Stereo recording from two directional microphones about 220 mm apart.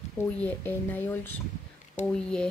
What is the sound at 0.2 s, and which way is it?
Speech, 5° left (ahead or behind).